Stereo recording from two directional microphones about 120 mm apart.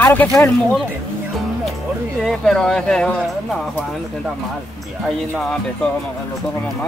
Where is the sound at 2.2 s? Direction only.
5° left (ahead or behind).